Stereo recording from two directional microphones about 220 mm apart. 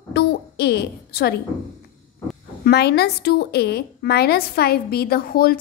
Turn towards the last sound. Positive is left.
turn(degrees=40)  # may be behind; listen again after turning